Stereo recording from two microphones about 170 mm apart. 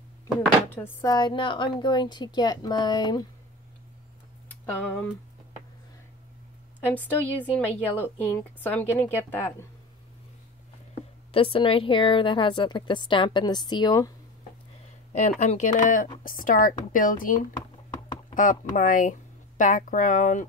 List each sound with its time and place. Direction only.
0.7 s a woman's voice: 15° left (ahead or behind)
6.9 s a woman's voice: 10° left (ahead or behind)
11.3 s a woman's voice: 30° left (ahead or behind)
15.1 s a woman's voice: 40° left (ahead or behind)